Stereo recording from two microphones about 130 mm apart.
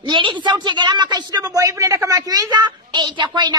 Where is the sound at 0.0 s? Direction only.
40° right (ahead or behind).